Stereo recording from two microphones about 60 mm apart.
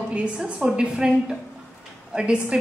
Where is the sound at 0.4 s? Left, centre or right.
Centre.